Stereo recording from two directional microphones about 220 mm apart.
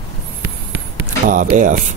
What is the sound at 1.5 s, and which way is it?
Speech, 35° right (ahead or behind).